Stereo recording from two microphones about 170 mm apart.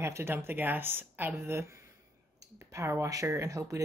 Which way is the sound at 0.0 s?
15° right (ahead or behind).